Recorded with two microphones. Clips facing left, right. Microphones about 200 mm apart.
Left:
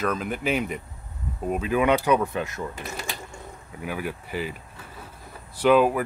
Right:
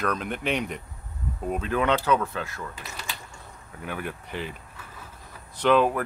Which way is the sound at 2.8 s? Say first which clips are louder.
Left 5 dB; 50° left (ahead or behind).